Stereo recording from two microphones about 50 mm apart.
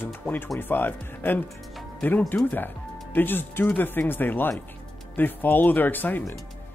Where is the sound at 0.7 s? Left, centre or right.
Left.